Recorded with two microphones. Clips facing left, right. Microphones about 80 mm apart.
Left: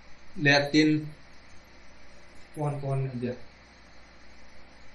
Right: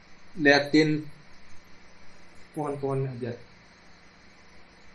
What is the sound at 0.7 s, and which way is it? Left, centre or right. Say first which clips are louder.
Speech: even; right.